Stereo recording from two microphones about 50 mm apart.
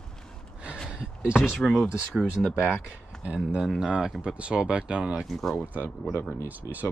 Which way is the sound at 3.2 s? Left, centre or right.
Right.